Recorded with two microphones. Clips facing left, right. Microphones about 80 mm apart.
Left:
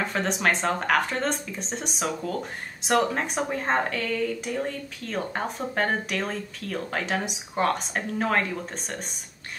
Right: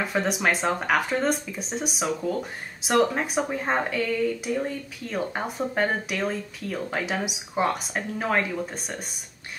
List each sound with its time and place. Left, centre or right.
0.0 s speech: centre